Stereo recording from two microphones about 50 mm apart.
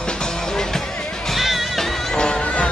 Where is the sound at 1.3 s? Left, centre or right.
Centre.